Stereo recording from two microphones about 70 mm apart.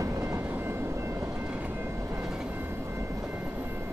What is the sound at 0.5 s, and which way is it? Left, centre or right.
Train, right.